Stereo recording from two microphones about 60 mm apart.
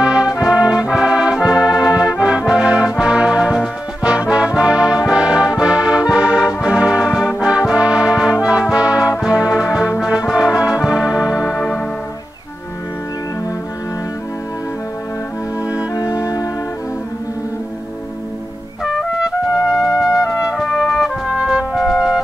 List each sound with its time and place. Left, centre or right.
0.0 s brass instrument: centre
0.4 s music: centre
10.0 s brass instrument: centre
15.9 s music: left
18.9 s trumpet: centre
20.2 s brass instrument: left
20.5 s brass instrument: centre
21.3 s music: centre